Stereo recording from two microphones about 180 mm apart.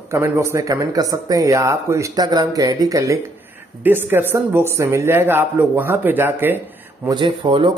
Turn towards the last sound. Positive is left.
turn(degrees=-25)  # may be behind; listen again after turning